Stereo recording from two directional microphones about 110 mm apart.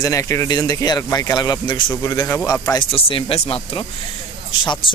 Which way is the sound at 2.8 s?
55° left (ahead or behind).